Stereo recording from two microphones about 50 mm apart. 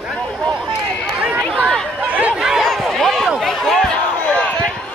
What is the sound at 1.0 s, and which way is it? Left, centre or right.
Run, centre.